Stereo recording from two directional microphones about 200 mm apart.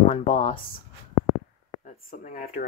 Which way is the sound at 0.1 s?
35° left (ahead or behind).